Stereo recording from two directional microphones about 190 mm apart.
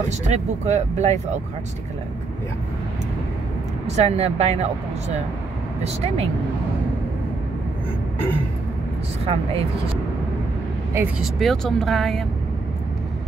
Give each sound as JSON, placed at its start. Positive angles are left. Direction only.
{"t": 0.3, "sound": "speech", "side_deg": -35}
{"t": 3.8, "sound": "speech", "side_deg": -35}
{"t": 9.2, "sound": "speech", "side_deg": -30}
{"t": 11.0, "sound": "speech", "side_deg": 0}